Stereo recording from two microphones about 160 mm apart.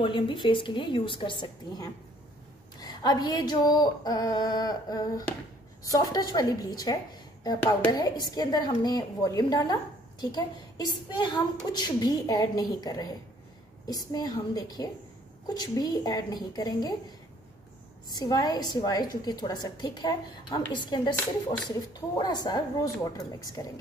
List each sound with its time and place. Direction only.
0.0 s a woman's voice: 30° left (ahead or behind)
18.1 s a woman's voice: 25° left (ahead or behind)
22.1 s a woman's voice: 25° left (ahead or behind)